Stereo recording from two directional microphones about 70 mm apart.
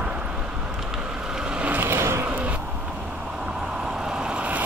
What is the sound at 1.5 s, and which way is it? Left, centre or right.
Vehicle, right.